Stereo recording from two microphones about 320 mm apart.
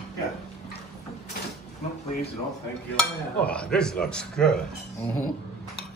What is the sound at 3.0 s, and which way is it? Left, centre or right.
Speech, centre.